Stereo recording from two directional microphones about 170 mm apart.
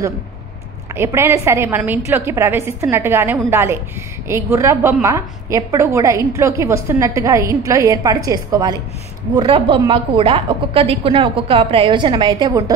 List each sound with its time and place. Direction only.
0.9 s a woman's voice: 15° right (ahead or behind)